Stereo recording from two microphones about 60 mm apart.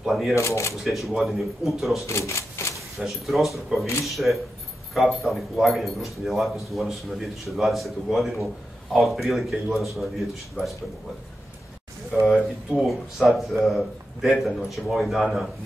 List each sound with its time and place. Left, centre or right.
0.0 s a man's voice: centre
0.4 s speech: left
0.8 s a man's voice: centre
2.0 s speech: left
3.0 s a man's voice: centre
12.1 s a man's voice: centre